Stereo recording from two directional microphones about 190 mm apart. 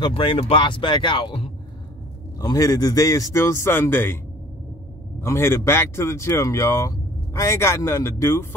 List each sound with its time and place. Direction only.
0.0 s speech: 25° left (ahead or behind)
5.2 s speech: 15° left (ahead or behind)